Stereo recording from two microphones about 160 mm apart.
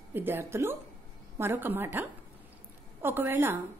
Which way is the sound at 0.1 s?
15° right (ahead or behind).